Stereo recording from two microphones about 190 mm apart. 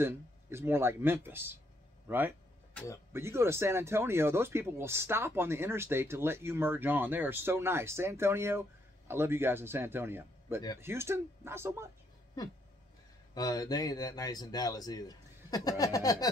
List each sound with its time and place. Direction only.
0.0 s speech: 10° right (ahead or behind)
2.7 s speech: 5° left (ahead or behind)
3.1 s speech: 15° right (ahead or behind)
13.3 s speech: 20° left (ahead or behind)